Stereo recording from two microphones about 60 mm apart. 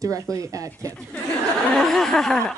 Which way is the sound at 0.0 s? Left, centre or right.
Right.